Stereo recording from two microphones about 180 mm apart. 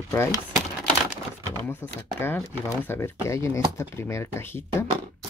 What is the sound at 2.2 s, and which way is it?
Speech, 10° left (ahead or behind).